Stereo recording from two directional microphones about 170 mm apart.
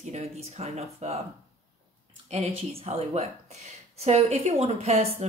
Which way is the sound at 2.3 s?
40° right (ahead or behind).